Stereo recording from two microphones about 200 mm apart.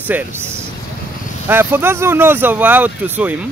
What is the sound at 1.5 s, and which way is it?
Speech, 10° right (ahead or behind).